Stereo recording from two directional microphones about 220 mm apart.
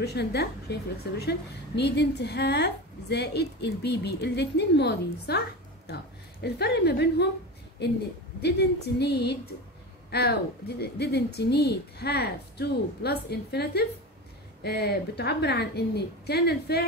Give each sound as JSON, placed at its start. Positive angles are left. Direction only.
{"t": 0.0, "sound": "a woman's voice", "side_deg": 50}
{"t": 6.4, "sound": "a woman's voice", "side_deg": 50}
{"t": 10.8, "sound": "a woman's voice", "side_deg": 50}